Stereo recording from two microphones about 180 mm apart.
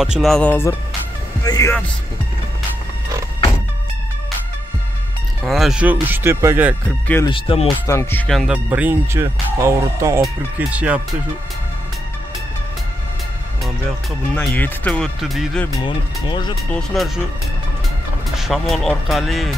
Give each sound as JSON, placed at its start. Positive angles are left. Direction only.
{"t": 0.0, "sound": "speech", "side_deg": 0}
{"t": 5.4, "sound": "music", "side_deg": 0}
{"t": 7.2, "sound": "speech", "side_deg": 30}
{"t": 7.8, "sound": "music", "side_deg": 15}
{"t": 10.2, "sound": "speech", "side_deg": -5}
{"t": 13.8, "sound": "speech", "side_deg": 5}
{"t": 15.8, "sound": "speech", "side_deg": 25}
{"t": 16.6, "sound": "speech", "side_deg": 5}
{"t": 18.3, "sound": "speech", "side_deg": 0}